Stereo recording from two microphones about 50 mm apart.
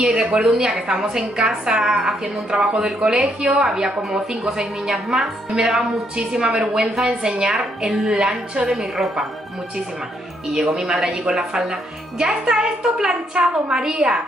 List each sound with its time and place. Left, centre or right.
0.0 s a woman's voice: centre
10.5 s a woman's voice: centre